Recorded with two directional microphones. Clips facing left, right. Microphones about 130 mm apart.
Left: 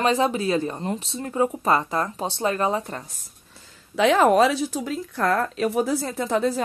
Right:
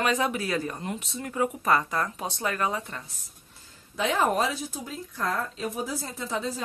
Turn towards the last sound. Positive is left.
turn(degrees=65)  # may be behind; listen again after turning